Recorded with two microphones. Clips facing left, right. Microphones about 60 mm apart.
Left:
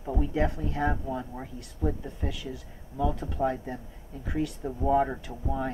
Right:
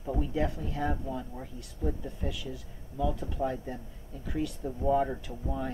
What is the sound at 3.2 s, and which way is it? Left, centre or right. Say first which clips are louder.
Speech: left 4 dB; left.